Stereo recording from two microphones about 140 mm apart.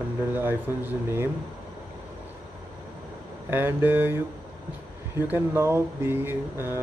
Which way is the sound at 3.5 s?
15° right (ahead or behind).